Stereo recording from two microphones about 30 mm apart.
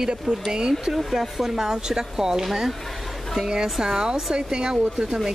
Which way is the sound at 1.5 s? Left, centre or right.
Right.